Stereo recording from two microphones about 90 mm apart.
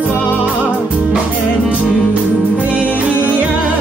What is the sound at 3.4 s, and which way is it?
Music, 15° right (ahead or behind).